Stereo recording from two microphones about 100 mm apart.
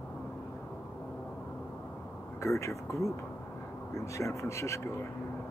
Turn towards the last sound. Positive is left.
turn(degrees=30)  # may be behind; listen again after turning